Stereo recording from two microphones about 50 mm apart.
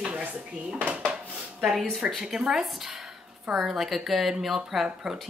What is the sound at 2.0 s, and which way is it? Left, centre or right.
Speech, right.